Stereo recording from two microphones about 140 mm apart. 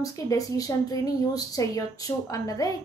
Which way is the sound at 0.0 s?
25° left (ahead or behind).